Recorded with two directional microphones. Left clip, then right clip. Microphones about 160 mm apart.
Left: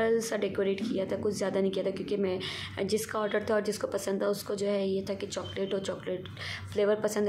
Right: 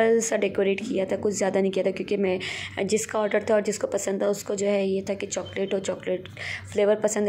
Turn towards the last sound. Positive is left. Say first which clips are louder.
# right 6 dB
turn(degrees=-20)  # may be behind; listen again after turning